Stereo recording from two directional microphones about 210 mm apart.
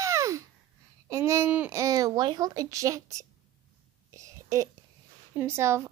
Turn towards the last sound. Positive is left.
turn(degrees=-15)  # may be behind; listen again after turning